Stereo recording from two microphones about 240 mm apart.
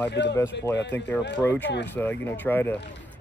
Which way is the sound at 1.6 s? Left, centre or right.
Left.